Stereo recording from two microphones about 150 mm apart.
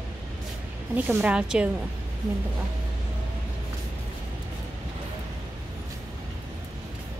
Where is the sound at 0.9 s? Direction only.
10° right (ahead or behind).